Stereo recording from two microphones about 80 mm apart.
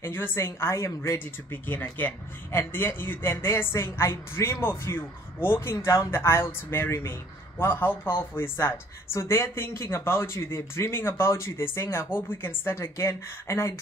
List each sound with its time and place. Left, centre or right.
0.0 s a man's voice: left
1.5 s a man's voice: left